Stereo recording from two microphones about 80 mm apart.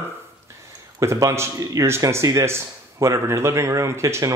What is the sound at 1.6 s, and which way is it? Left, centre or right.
Speech, right.